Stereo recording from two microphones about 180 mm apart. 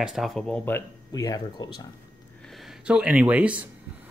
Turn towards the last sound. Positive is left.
turn(degrees=-10)  # may be behind; listen again after turning